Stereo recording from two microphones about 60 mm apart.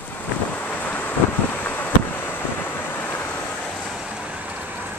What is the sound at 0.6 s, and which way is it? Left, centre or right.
Wind noise, left.